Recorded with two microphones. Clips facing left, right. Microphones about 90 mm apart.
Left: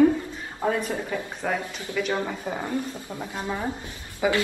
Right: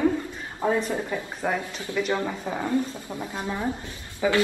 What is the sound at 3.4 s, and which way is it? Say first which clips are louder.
Speech: even; 15° left (ahead or behind).